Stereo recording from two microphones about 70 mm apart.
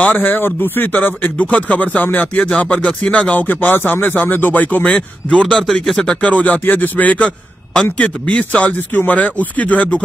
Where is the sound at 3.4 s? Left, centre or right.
Left.